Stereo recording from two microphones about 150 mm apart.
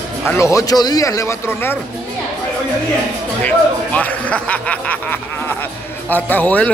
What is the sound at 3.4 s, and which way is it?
Speech, 10° left (ahead or behind).